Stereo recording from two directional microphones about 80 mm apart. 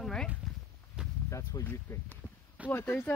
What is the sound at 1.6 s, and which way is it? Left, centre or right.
Speech, left.